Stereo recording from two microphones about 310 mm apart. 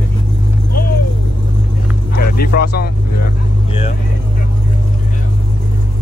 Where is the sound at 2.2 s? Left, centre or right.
Left.